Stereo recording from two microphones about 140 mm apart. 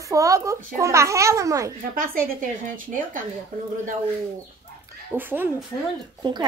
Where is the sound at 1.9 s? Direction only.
90° right.